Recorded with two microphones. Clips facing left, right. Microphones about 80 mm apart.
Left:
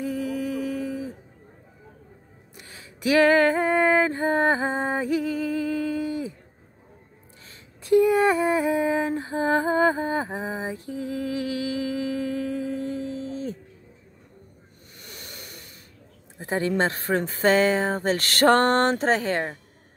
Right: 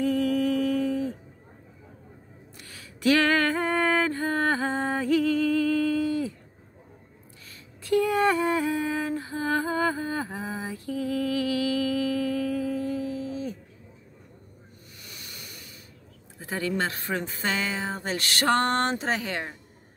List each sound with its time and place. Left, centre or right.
0.0 s mantra: centre
2.5 s a sound: left
7.8 s lullaby: centre
15.0 s snake: left
16.3 s speech: left